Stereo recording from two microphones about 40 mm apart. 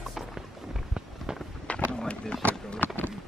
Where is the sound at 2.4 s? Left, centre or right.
Left.